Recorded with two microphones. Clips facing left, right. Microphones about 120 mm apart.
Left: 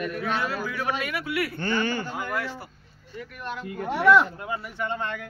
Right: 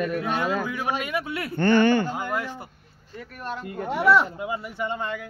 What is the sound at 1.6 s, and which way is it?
Speech, 55° right (ahead or behind).